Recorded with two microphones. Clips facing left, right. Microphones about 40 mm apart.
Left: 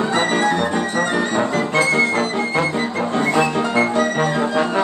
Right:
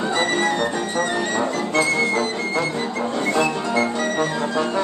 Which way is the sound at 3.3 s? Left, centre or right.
Centre.